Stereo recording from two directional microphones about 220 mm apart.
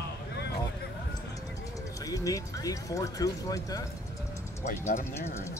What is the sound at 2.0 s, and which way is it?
Speech, 15° left (ahead or behind).